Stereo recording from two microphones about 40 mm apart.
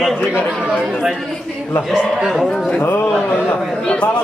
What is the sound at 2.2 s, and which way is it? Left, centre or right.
Speech, centre.